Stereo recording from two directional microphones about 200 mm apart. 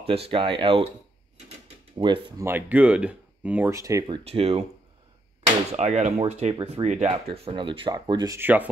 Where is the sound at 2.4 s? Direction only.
10° right (ahead or behind); by 4.6 s 30° right (ahead or behind).